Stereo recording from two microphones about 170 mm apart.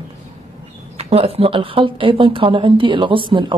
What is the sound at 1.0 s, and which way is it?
Speech, 35° right (ahead or behind).